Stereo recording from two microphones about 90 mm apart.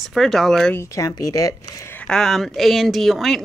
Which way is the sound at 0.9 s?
40° left (ahead or behind).